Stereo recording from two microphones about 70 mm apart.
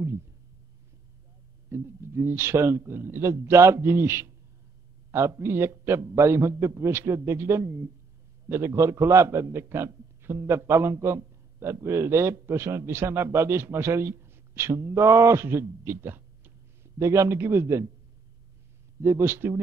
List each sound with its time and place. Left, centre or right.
1.7 s a man's voice: right
18.9 s a man's voice: right